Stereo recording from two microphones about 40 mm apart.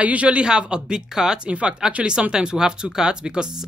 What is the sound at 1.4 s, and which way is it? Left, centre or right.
Speech, right.